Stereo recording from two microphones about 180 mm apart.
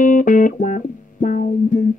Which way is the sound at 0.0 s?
45° left (ahead or behind).